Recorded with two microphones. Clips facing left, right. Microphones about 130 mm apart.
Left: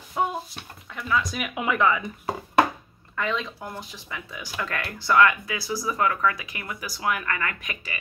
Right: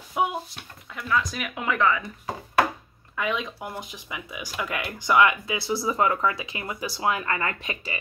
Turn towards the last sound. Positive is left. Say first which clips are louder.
# right 2 dB
turn(degrees=-30)  # may be behind; listen again after turning